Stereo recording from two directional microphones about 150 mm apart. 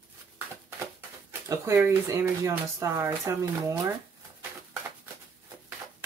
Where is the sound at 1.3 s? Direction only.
15° right (ahead or behind).